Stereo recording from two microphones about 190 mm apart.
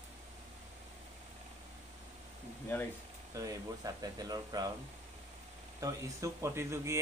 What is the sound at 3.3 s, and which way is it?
Speech, 15° right (ahead or behind).